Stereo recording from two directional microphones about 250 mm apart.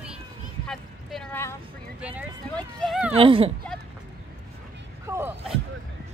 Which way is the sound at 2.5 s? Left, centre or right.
Centre.